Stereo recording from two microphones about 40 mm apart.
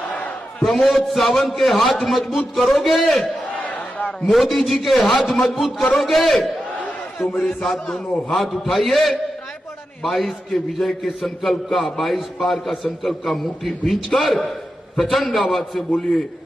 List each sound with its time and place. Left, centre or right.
0.6 s a man's voice: centre
3.5 s crowd: left
4.3 s a man's voice: centre
7.4 s a man's voice: centre